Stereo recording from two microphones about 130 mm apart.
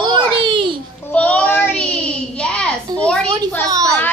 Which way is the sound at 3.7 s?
25° right (ahead or behind).